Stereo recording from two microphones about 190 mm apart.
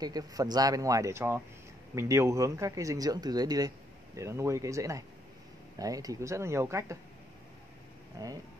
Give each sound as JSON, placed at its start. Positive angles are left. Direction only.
{"t": 0.0, "sound": "speech", "side_deg": -20}
{"t": 8.2, "sound": "speech", "side_deg": -15}